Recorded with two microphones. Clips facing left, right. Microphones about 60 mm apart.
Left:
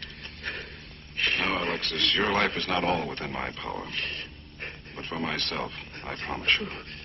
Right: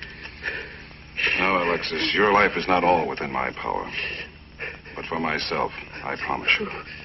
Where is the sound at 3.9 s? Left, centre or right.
Right.